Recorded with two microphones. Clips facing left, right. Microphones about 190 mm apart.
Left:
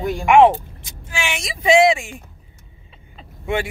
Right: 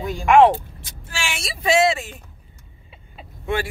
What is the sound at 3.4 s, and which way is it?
Speech, 20° left (ahead or behind).